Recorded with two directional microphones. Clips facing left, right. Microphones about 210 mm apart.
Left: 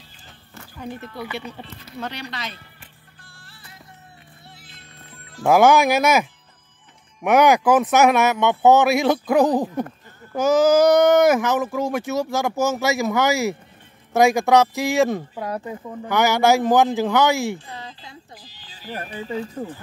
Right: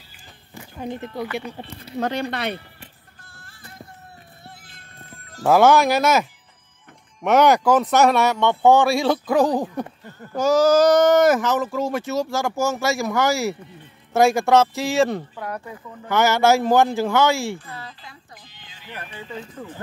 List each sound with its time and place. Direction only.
0.6 s music: 20° right (ahead or behind)
1.9 s speech: 45° right (ahead or behind); by 2.6 s 60° right (ahead or behind)
3.3 s music: 45° right (ahead or behind)
5.5 s speech: 15° left (ahead or behind)
7.4 s speech: centre (ahead or behind)
8.4 s speech: 20° left (ahead or behind); by 19.7 s 35° left (ahead or behind)